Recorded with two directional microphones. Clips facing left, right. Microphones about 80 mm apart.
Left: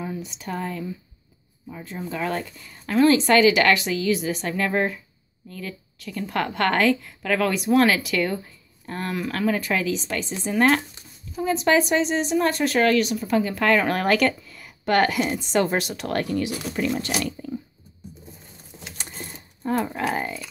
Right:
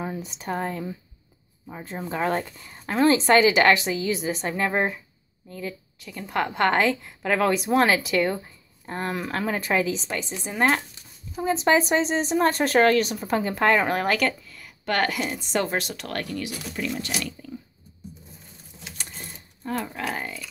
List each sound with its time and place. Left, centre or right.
0.0 s speech: right
10.3 s speech: centre
11.3 s speech: right
13.8 s speech: centre
14.5 s a woman's voice: centre; by 16.5 s left
16.7 s speech: left
19.8 s speech: centre